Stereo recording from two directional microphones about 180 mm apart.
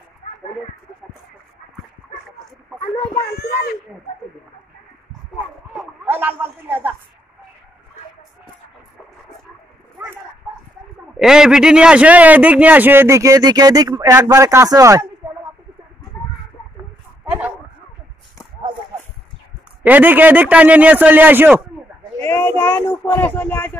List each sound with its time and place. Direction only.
3.3 s speech: 60° left (ahead or behind)
6.0 s speech: 10° right (ahead or behind)
11.1 s speech: 5° right (ahead or behind); by 15.0 s 20° right (ahead or behind)
17.2 s a sound: 10° right (ahead or behind)
19.8 s speech: 10° right (ahead or behind)
22.2 s a sound: 10° left (ahead or behind)